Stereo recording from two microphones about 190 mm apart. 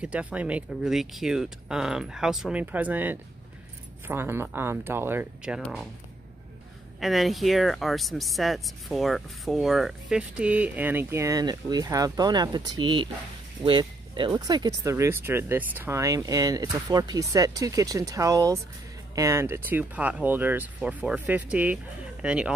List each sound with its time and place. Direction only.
0.0 s speech: 5° right (ahead or behind)
7.0 s speech: centre (ahead or behind)